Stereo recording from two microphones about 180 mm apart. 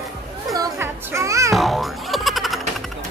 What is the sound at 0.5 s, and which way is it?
Music, 15° right (ahead or behind).